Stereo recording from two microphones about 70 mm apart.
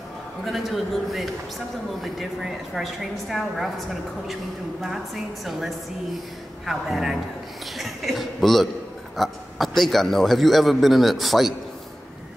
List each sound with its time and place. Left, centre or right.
0.5 s a woman's voice: centre